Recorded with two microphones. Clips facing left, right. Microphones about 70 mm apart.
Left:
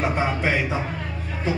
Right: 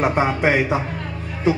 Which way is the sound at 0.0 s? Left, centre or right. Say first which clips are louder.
Right 5 dB; right.